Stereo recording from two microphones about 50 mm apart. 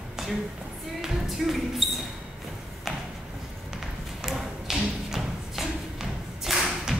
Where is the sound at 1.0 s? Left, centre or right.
Centre.